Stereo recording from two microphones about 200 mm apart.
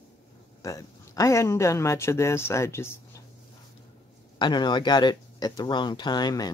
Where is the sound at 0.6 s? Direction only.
15° left (ahead or behind).